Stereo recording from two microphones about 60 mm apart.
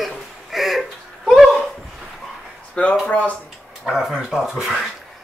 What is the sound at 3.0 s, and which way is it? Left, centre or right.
Speech, left.